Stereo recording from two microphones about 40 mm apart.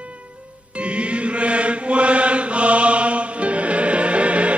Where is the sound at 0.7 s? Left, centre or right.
Right.